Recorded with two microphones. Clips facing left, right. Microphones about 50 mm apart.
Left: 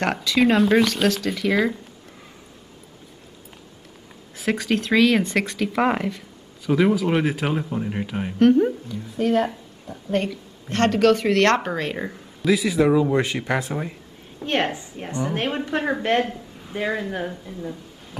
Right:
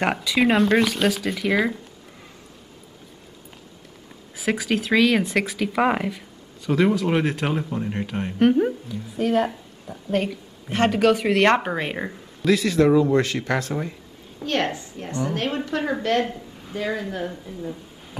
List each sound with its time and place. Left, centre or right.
0.0 s speech: centre
4.4 s speech: centre
8.4 s speech: centre
12.1 s a woman's voice: centre; by 16.3 s left
16.3 s a sound: centre
16.7 s a woman's voice: centre
17.3 s speech: centre